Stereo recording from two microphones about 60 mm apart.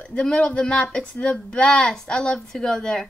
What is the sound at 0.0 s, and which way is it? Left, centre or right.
A woman's voice, centre.